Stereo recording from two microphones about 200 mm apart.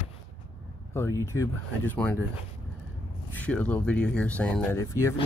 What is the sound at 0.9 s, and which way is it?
Speech, 15° left (ahead or behind).